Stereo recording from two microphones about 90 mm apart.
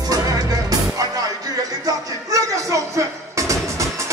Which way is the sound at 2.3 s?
35° right (ahead or behind).